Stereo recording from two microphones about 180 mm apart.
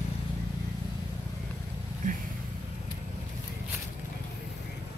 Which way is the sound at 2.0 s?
45° right (ahead or behind).